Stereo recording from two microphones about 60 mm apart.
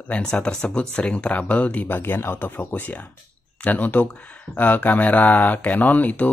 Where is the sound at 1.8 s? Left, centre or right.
Left.